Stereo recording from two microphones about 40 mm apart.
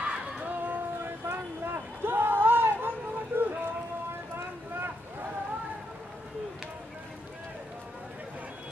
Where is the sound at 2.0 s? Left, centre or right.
Right.